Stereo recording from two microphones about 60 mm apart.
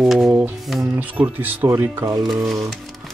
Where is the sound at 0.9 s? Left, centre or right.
Right.